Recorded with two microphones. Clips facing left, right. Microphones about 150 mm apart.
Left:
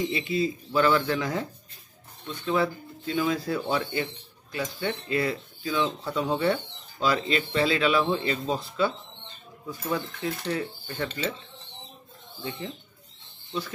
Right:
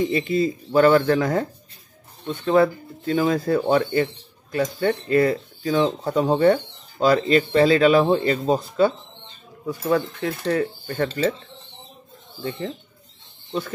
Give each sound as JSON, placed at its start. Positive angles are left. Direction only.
{"t": 0.1, "sound": "speech", "side_deg": -45}
{"t": 9.7, "sound": "speech", "side_deg": -65}
{"t": 13.5, "sound": "speech", "side_deg": -50}